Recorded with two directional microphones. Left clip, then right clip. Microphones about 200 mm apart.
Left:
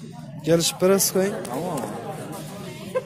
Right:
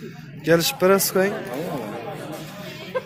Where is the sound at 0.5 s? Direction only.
15° left (ahead or behind).